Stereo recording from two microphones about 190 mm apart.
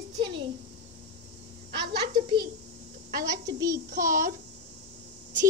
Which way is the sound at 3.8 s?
45° right (ahead or behind).